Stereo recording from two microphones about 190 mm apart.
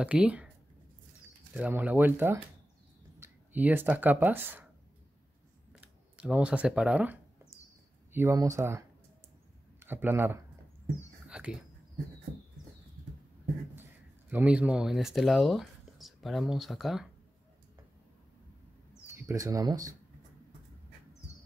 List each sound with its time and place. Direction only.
0.0 s speech: 5° right (ahead or behind)
1.5 s speech: 10° right (ahead or behind)
5.8 s speech: 5° right (ahead or behind)
11.2 s whispering: 5° right (ahead or behind)
14.3 s speech: 5° right (ahead or behind)
19.1 s speech: 15° right (ahead or behind)